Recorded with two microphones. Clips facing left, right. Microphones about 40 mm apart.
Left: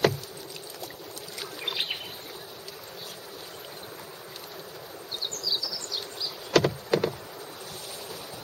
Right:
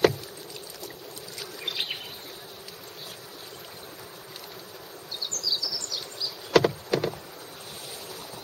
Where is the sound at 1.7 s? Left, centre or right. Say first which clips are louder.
Left 1 dB; centre.